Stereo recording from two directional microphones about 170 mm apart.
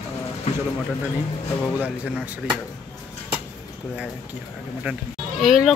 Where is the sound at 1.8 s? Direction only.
10° right (ahead or behind).